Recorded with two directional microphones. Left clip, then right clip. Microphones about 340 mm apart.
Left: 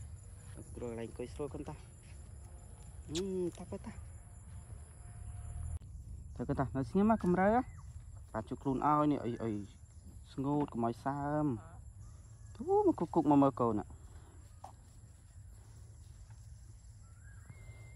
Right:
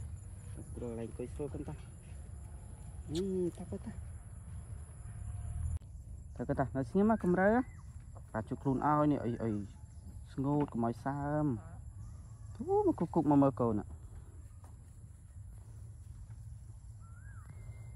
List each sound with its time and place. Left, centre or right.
0.7 s speech: left
1.3 s speech: centre
3.1 s speech: centre
6.3 s speech: centre